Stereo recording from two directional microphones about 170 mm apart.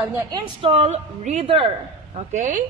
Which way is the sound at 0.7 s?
40° right (ahead or behind).